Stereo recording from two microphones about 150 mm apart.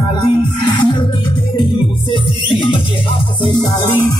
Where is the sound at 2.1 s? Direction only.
35° left (ahead or behind).